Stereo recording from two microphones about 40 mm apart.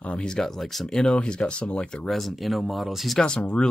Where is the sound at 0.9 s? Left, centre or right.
Left.